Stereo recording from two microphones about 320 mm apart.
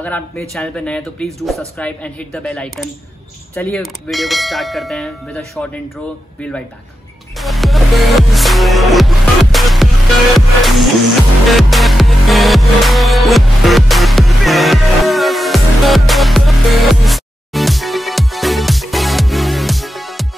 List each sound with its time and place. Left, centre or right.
0.0 s speech: centre
7.3 s music: centre